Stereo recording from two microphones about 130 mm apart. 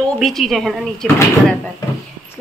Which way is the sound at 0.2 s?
Centre (ahead or behind).